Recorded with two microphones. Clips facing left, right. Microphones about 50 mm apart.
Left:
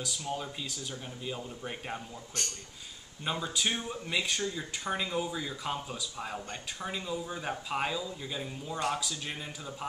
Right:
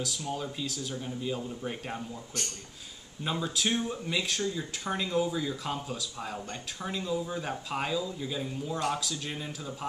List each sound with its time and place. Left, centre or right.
0.0 s speech: centre